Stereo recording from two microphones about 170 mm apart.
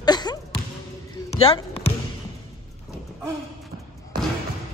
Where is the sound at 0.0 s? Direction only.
25° left (ahead or behind).